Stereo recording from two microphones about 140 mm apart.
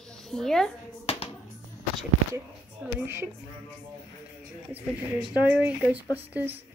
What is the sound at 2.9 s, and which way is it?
Speech, 15° right (ahead or behind).